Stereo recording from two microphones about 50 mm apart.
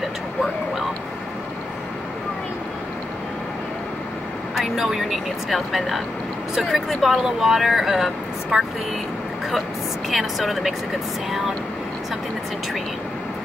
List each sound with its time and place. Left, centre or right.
4.6 s speech: centre
10.0 s speech: centre